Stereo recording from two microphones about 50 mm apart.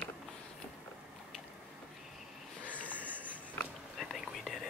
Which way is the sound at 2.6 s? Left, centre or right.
Right.